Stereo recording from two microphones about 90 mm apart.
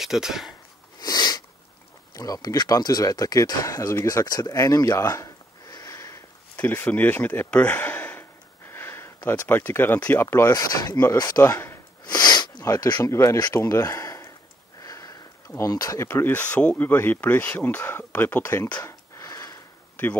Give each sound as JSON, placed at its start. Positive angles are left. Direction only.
{"t": 0.0, "sound": "speech", "side_deg": -5}
{"t": 0.9, "sound": "sneeze", "side_deg": 50}
{"t": 2.1, "sound": "speech", "side_deg": 40}
{"t": 6.5, "sound": "a sound", "side_deg": 20}
{"t": 9.9, "sound": "speech", "side_deg": 15}
{"t": 10.2, "sound": "speech", "side_deg": 30}
{"t": 10.5, "sound": "speech", "side_deg": 45}
{"t": 12.0, "sound": "sneeze", "side_deg": 50}
{"t": 12.6, "sound": "speech", "side_deg": 40}
{"t": 14.8, "sound": "sniff", "side_deg": 40}
{"t": 15.5, "sound": "speech", "side_deg": 40}
{"t": 16.1, "sound": "speech", "side_deg": 20}
{"t": 18.9, "sound": "a sound", "side_deg": 35}